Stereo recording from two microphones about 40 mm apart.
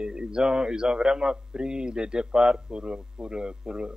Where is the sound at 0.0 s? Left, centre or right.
Right.